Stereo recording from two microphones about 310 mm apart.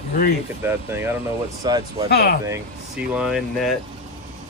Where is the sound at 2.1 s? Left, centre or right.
Left.